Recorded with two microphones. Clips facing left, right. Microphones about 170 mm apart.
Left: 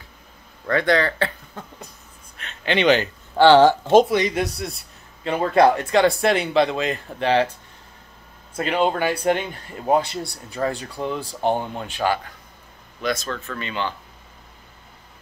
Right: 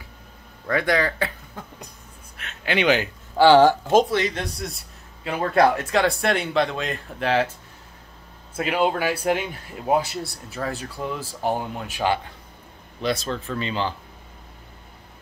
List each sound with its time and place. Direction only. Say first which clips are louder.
0.7 s speech: left 2 dB; 10° right (ahead or behind)
4.1 s a man's voice: left 3 dB; 15° left (ahead or behind); by 7.5 s centre (ahead or behind)
8.5 s a man's voice: left 1 dB; 5° right (ahead or behind)
13.0 s speech: even; 30° right (ahead or behind)